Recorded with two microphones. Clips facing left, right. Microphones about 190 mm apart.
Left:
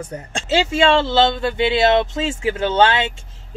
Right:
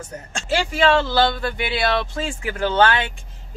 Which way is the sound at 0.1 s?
25° left (ahead or behind).